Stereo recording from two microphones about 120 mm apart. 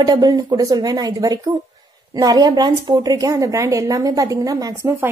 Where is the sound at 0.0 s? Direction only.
35° right (ahead or behind).